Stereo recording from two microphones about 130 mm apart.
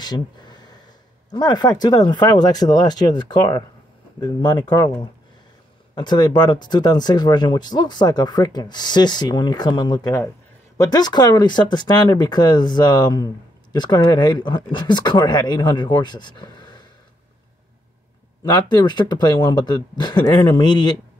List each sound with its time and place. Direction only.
0.0 s a sound: 35° left (ahead or behind)
1.3 s speech: 35° left (ahead or behind)
5.9 s speech: 35° left (ahead or behind)
18.4 s speech: 30° left (ahead or behind)